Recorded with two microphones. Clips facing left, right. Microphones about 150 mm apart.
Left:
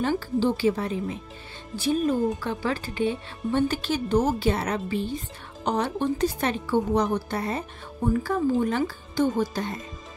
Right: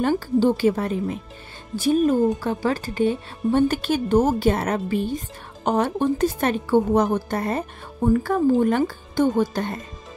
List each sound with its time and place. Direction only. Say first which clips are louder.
0.0 s a woman's voice: right 5 dB; 50° right (ahead or behind)